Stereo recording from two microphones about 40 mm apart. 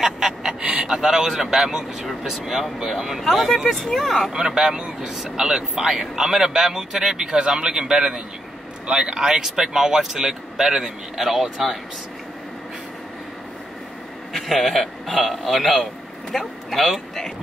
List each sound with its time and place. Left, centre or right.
0.0 s a man's voice: centre
4.3 s a man's voice: centre
14.3 s a man's voice: centre